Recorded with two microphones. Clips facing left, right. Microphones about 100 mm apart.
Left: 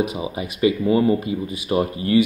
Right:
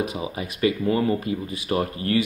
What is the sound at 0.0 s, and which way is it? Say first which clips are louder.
Speech: left 4 dB; 15° left (ahead or behind).